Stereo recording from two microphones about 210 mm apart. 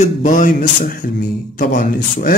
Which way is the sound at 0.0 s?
40° left (ahead or behind).